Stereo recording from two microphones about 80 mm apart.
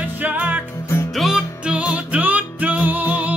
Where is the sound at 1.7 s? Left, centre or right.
Centre.